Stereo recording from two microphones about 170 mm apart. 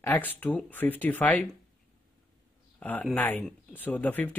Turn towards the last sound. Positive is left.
turn(degrees=10)  # may be behind; listen again after turning